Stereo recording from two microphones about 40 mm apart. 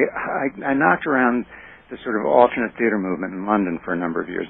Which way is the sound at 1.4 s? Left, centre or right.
Right.